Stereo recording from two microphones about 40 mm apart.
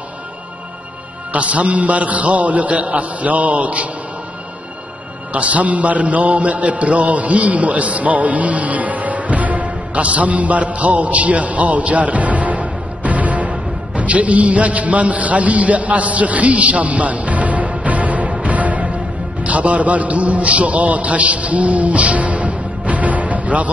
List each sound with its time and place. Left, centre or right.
1.3 s a man's voice: right
5.3 s a man's voice: right